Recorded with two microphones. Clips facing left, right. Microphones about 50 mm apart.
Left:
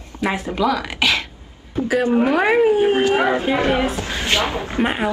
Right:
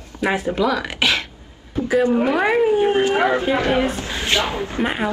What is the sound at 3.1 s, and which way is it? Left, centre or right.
A woman's voice, left.